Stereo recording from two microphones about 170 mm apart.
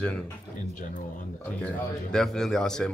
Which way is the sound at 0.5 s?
50° left (ahead or behind).